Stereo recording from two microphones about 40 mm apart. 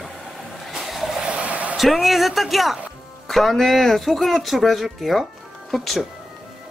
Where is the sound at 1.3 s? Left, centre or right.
Right.